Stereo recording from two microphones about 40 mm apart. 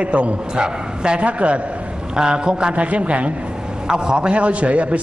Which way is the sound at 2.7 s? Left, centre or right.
Right.